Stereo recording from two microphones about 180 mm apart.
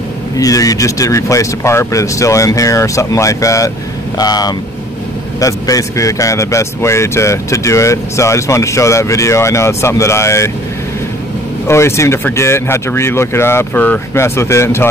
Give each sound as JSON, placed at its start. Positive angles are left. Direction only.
{"t": 0.4, "sound": "a man's voice", "side_deg": 20}
{"t": 11.6, "sound": "a man's voice", "side_deg": 15}